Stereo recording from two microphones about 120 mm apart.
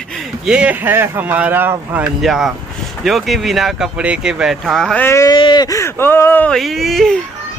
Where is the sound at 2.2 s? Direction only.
Centre (ahead or behind).